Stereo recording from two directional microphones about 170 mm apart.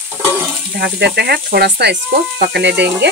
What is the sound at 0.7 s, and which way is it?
Speech, 70° right (ahead or behind).